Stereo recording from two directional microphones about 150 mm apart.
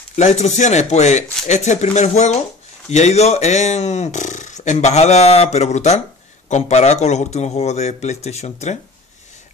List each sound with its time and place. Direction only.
0.1 s speech: 50° left (ahead or behind)